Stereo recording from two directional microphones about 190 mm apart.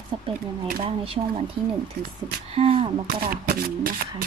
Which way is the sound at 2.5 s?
30° right (ahead or behind).